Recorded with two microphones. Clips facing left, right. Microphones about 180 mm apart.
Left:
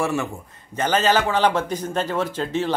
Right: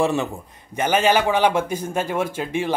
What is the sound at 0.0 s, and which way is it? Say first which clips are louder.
A man's voice: right 3 dB; 20° right (ahead or behind).